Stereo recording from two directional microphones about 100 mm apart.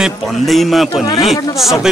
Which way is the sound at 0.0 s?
Centre (ahead or behind).